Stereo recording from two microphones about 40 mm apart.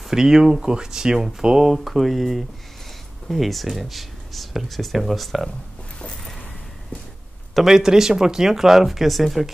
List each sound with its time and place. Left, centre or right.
0.1 s speech: centre
1.7 s speech: centre
7.6 s speech: centre